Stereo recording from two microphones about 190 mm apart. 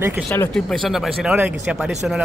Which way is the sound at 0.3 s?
10° left (ahead or behind).